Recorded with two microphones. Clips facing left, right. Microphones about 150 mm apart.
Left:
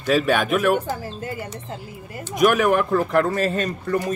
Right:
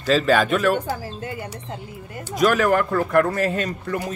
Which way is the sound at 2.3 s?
15° left (ahead or behind).